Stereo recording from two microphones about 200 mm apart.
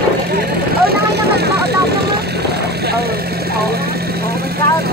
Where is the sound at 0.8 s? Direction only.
55° right (ahead or behind).